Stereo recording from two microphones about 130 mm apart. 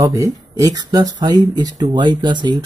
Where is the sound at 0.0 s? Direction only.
25° right (ahead or behind).